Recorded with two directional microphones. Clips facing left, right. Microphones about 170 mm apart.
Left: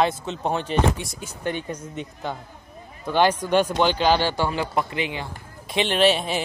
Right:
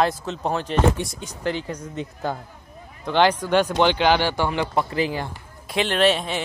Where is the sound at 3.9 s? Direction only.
15° right (ahead or behind).